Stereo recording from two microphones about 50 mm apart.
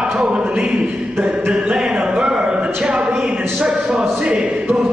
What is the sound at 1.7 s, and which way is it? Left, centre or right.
Music, centre.